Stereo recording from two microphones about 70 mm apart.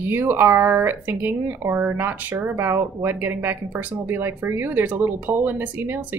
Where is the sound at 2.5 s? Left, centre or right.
Right.